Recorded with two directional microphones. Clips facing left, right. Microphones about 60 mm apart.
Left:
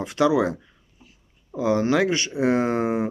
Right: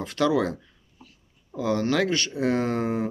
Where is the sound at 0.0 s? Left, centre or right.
Centre.